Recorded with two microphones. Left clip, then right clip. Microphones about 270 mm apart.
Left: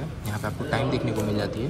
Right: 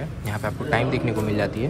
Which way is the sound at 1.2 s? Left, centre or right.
Centre.